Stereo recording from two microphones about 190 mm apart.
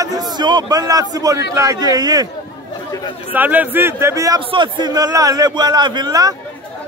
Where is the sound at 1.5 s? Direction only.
20° right (ahead or behind).